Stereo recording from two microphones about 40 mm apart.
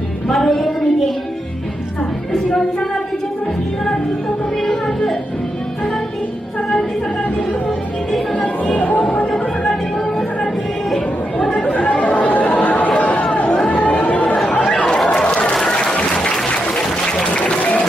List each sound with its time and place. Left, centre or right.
0.3 s a sound: centre
4.6 s music: centre
8.7 s chatter: left
11.6 s chatter: left
14.9 s chatter: centre
16.2 s applause: centre